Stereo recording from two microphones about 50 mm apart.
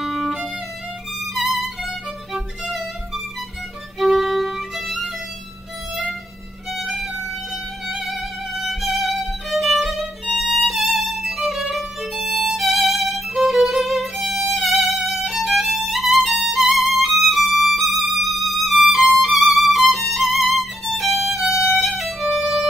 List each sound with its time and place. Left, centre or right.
0.0 s music: centre
1.2 s violin: centre
4.0 s violin: centre
6.7 s violin: centre
8.0 s music: centre
10.3 s violin: centre